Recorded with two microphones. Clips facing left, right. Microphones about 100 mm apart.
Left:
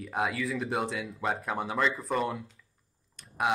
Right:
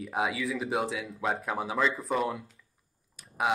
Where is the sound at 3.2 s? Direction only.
Centre (ahead or behind).